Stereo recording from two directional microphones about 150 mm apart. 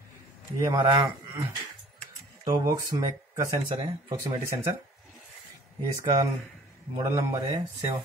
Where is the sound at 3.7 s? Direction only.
35° right (ahead or behind).